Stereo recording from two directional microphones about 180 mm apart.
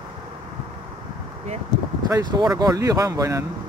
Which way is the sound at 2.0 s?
20° right (ahead or behind).